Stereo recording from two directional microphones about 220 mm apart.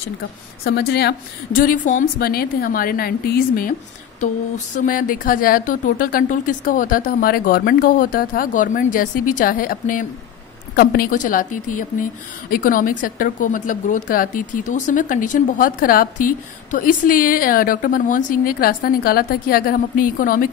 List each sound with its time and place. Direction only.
0.7 s a woman's voice: 50° left (ahead or behind)
4.7 s a woman's voice: 35° left (ahead or behind)